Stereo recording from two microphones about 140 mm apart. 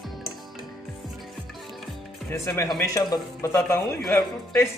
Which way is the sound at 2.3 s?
20° left (ahead or behind).